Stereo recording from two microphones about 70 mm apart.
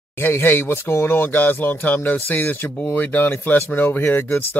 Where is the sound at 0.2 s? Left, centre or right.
Left.